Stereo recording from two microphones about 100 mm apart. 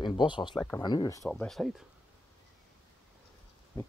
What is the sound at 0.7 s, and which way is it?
Speech, 40° left (ahead or behind).